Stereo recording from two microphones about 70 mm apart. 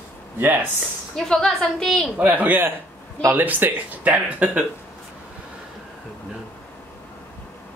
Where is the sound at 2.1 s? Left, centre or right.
Right.